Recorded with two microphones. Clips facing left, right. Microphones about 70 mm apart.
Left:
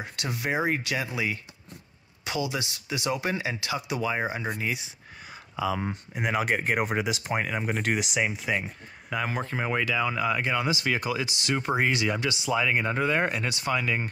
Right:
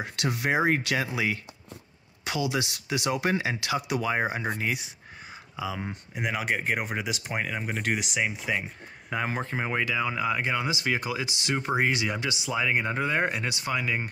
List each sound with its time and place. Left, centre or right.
0.0 s speech: right
4.1 s speech: right
5.3 s a sound: centre
5.8 s speech: centre
9.1 s speech: right